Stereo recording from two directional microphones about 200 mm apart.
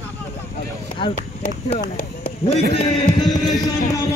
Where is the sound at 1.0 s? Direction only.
30° left (ahead or behind).